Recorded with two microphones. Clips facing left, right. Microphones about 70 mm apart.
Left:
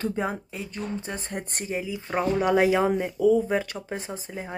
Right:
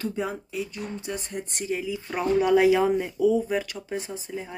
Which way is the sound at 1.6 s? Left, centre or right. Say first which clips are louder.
Right 3 dB; left.